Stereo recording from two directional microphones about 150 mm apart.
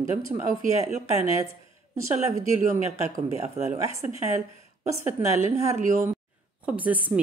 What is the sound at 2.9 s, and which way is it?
Speech, 55° right (ahead or behind).